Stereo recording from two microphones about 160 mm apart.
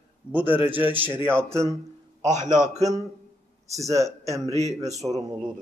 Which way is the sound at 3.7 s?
20° right (ahead or behind).